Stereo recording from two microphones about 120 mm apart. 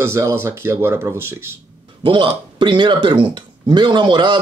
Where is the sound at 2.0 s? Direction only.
45° right (ahead or behind).